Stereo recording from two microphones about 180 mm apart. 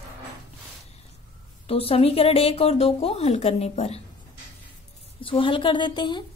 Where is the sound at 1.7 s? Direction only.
30° left (ahead or behind).